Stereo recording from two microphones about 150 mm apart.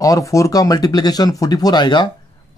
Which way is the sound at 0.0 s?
20° left (ahead or behind).